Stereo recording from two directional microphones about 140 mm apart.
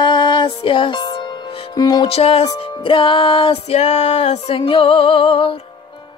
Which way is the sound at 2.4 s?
35° left (ahead or behind).